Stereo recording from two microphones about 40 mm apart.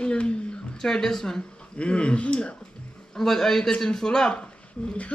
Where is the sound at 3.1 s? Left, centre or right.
Centre.